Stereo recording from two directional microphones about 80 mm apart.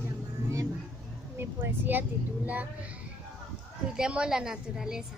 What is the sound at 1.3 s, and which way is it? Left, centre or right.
A woman's voice, right.